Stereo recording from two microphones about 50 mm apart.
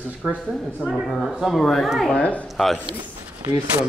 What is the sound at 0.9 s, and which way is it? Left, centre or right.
Speech, centre.